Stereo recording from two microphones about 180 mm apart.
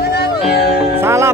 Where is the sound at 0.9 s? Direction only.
15° right (ahead or behind).